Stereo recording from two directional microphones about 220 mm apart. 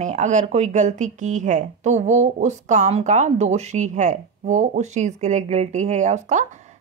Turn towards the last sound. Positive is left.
turn(degrees=-35)  # may be behind; listen again after turning